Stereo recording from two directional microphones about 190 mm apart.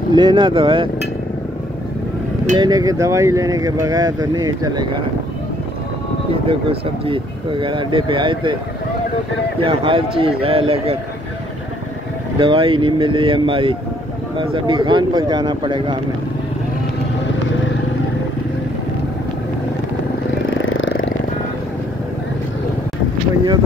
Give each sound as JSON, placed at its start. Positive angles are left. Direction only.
{"t": 0.1, "sound": "speech", "side_deg": -25}
{"t": 2.5, "sound": "speech", "side_deg": -20}
{"t": 6.4, "sound": "speech", "side_deg": -30}
{"t": 9.6, "sound": "speech", "side_deg": -30}
{"t": 12.4, "sound": "speech", "side_deg": -25}
{"t": 20.4, "sound": "vehicle", "side_deg": 85}